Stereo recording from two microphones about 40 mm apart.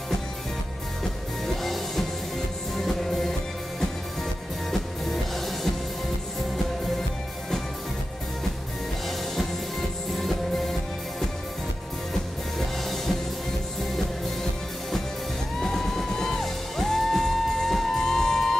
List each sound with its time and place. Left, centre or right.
1.4 s music: centre
4.6 s music: centre
9.0 s music: centre
12.5 s music: centre
15.6 s music: centre